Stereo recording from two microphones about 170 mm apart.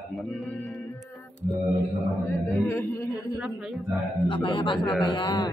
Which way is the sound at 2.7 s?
15° left (ahead or behind).